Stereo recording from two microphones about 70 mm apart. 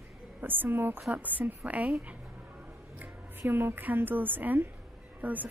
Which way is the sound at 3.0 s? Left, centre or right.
Right.